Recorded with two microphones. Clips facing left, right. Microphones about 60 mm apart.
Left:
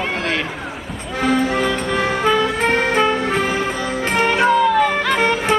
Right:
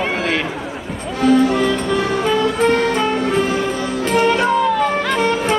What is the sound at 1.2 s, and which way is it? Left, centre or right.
Music, left.